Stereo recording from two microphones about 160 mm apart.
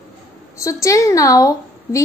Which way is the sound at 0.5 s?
20° left (ahead or behind).